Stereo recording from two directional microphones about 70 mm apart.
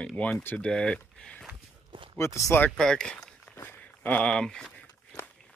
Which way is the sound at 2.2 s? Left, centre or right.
Left.